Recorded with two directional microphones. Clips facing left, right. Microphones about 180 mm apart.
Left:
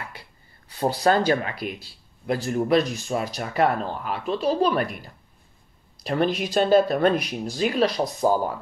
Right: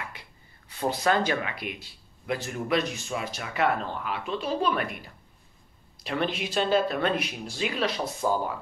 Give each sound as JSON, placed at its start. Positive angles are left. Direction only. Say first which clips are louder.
{"t": 0.1, "sound": "speech", "louder": "left 3 dB", "side_deg": 35}
{"t": 6.0, "sound": "speech", "louder": "left 6 dB", "side_deg": 40}